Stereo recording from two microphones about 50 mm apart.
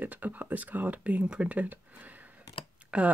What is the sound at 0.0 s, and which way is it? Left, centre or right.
Speech, right.